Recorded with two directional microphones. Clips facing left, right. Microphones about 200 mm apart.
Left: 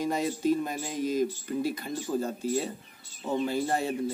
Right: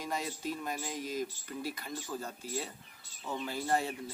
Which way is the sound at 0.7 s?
25° left (ahead or behind).